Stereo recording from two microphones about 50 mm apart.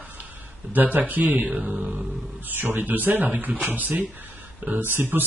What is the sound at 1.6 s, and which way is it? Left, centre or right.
Speech, centre.